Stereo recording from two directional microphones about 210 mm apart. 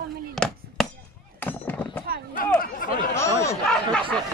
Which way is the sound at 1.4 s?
10° left (ahead or behind).